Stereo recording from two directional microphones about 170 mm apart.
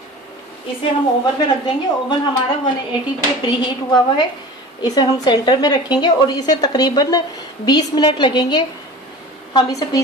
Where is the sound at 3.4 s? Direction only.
25° left (ahead or behind).